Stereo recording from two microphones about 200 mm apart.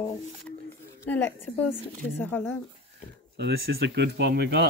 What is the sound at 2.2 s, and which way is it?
Speech, 10° left (ahead or behind).